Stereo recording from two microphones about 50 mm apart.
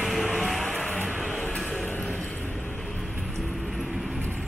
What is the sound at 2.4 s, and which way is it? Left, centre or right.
Vehicle, left.